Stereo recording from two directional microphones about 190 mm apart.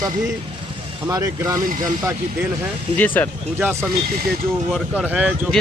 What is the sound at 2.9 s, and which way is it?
Speech, 10° left (ahead or behind).